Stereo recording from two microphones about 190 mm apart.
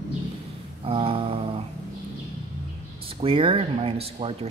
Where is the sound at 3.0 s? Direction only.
30° right (ahead or behind).